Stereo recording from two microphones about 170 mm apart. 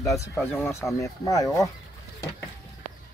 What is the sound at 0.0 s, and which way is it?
Speech, 20° left (ahead or behind).